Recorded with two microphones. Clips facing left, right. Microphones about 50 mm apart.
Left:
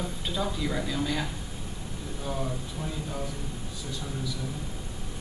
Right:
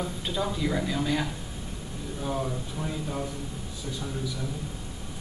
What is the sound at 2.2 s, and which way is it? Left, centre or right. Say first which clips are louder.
Speech: right 2 dB; centre.